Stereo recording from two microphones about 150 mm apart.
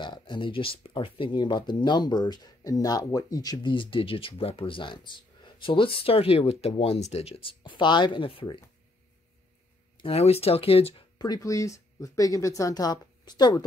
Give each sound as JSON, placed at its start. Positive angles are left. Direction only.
{"t": 0.0, "sound": "speech", "side_deg": 30}
{"t": 9.9, "sound": "speech", "side_deg": 40}
{"t": 11.1, "sound": "speech", "side_deg": 25}